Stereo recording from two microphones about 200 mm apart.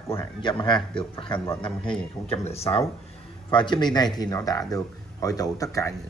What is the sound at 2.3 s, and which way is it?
A man's voice, 30° left (ahead or behind).